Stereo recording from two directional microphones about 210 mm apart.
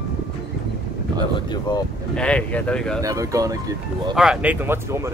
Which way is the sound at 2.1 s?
5° left (ahead or behind).